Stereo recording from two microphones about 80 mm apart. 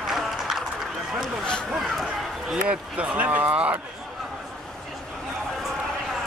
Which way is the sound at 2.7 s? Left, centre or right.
Centre.